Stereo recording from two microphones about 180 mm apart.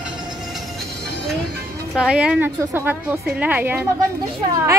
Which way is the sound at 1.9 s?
5° right (ahead or behind).